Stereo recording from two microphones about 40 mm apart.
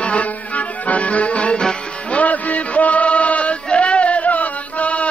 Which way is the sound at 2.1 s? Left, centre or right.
Left.